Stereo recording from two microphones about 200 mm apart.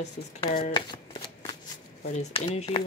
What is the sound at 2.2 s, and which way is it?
Speech, 30° left (ahead or behind).